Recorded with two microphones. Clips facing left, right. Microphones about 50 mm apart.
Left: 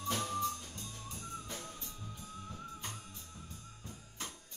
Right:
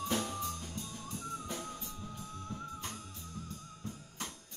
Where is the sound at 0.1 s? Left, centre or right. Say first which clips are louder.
Left 4 dB; centre.